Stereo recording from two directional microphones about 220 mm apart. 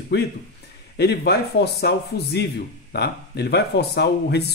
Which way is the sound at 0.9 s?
50° left (ahead or behind).